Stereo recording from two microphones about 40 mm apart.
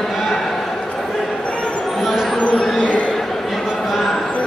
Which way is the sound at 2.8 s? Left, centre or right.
Left.